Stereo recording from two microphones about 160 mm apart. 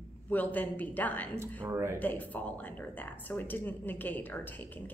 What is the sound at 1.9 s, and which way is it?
Speech, 10° left (ahead or behind).